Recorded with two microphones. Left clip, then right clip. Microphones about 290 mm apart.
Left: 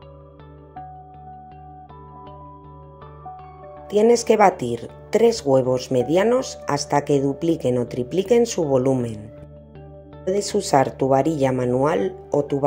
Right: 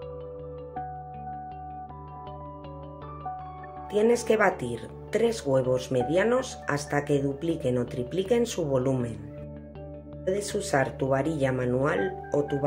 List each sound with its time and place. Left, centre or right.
3.9 s speech: centre
10.2 s speech: centre